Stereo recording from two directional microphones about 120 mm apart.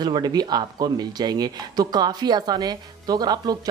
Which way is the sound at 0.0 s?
35° right (ahead or behind).